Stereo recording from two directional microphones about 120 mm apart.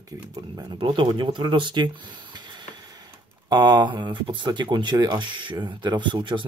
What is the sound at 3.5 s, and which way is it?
Speech, 35° right (ahead or behind).